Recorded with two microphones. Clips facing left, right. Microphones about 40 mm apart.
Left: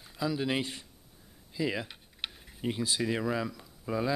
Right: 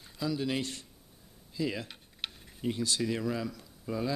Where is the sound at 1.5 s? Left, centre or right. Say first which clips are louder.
Left 2 dB; centre.